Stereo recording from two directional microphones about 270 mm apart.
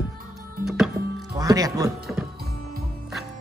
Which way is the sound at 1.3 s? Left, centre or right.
Centre.